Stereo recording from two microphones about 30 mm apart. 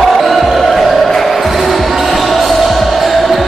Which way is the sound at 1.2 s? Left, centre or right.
Centre.